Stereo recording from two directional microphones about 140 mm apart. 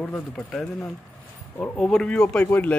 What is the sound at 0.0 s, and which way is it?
Speech, 5° left (ahead or behind).